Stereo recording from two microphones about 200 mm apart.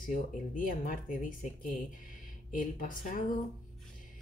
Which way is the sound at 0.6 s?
45° left (ahead or behind).